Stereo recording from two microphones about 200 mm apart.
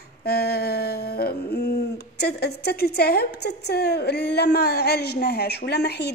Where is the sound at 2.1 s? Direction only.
55° left (ahead or behind).